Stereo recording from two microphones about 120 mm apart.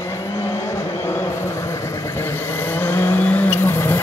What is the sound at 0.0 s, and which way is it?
Vehicle, 25° left (ahead or behind).